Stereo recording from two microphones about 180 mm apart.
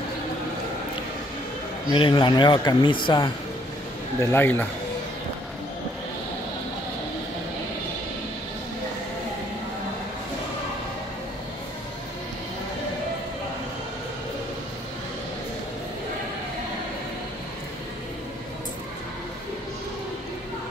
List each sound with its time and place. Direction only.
1.9 s a man's voice: 30° left (ahead or behind)
4.2 s a man's voice: 10° left (ahead or behind)